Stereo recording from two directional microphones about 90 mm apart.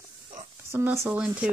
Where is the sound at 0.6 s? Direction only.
25° right (ahead or behind).